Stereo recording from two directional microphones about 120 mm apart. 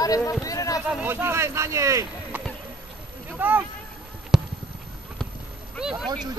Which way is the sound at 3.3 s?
15° right (ahead or behind).